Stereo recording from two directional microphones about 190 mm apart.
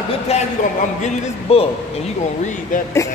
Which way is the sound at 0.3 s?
35° left (ahead or behind).